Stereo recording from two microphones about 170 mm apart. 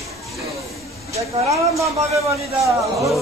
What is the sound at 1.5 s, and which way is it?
A man's voice, 20° right (ahead or behind).